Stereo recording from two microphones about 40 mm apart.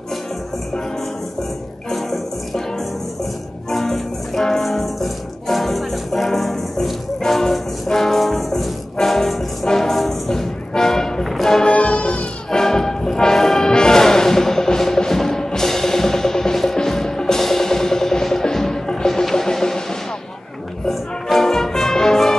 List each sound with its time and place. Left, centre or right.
1.9 s music: centre
3.7 s music: centre
10.7 s vehicle: centre
11.6 s music: left
12.4 s music: centre
20.9 s music: centre